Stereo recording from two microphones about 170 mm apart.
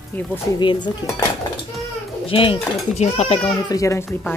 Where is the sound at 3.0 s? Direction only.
40° left (ahead or behind).